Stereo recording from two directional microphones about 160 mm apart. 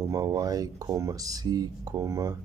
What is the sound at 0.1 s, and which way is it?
Speech, 20° right (ahead or behind).